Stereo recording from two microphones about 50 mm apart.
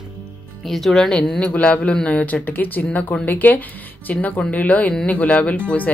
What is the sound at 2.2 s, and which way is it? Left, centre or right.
Speech, left.